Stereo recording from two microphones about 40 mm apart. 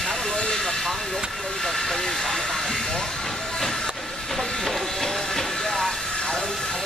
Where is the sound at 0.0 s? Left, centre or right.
Centre.